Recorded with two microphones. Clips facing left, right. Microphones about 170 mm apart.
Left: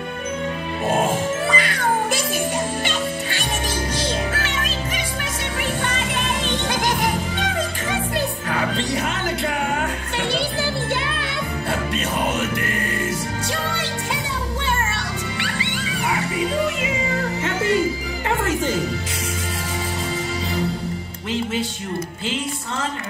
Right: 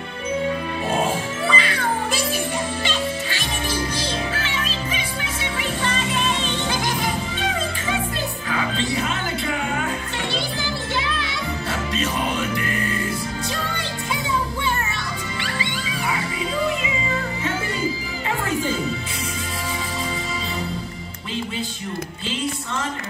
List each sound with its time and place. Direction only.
0.8 s music: 50° left (ahead or behind)
5.4 s music: 55° left (ahead or behind)
8.5 s music: 65° left (ahead or behind)
11.0 s music: 55° left (ahead or behind)
13.7 s music: 75° left (ahead or behind)
15.4 s music: 65° left (ahead or behind)